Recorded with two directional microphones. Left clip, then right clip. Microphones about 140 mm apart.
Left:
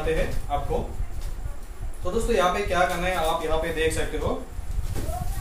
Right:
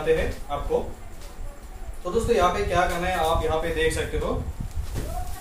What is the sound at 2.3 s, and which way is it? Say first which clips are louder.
A man's voice: even; 10° right (ahead or behind).